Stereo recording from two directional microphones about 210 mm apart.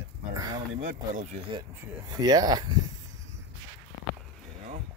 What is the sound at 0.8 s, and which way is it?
Speech, 35° right (ahead or behind).